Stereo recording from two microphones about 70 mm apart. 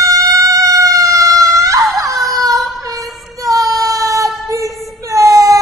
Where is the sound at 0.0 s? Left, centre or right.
Right.